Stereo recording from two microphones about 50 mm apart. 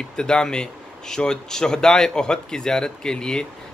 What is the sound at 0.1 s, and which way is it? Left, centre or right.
Speech, centre.